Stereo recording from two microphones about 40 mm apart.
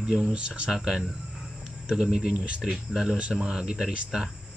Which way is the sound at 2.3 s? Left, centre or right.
Right.